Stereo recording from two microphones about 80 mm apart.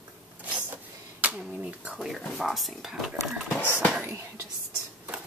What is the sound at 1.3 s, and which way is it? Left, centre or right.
Speech, centre.